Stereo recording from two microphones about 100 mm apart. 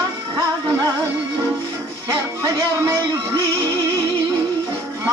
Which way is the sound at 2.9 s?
35° right (ahead or behind).